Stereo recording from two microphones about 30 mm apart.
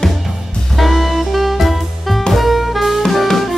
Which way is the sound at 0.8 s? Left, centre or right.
Centre.